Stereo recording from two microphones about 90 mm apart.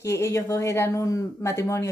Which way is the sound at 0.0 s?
30° left (ahead or behind).